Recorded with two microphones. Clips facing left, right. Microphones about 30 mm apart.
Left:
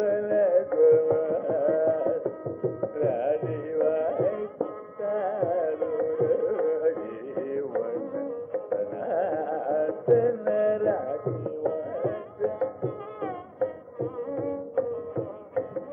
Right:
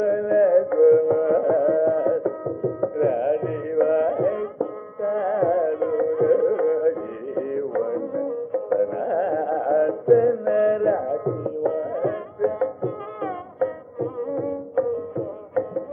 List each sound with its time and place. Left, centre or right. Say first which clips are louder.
0.0 s music: right 4 dB; centre
0.7 s carnatic music: right 2 dB; centre
1.2 s music: right 7 dB; centre
1.5 s music: right 5 dB; centre
2.8 s carnatic music: right 6 dB; centre
3.2 s music: right 4 dB; centre
8.6 s music: right 8 dB; right
9.0 s music: right 4 dB; centre